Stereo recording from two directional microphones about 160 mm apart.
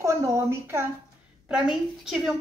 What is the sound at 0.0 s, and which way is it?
Speech, 20° right (ahead or behind).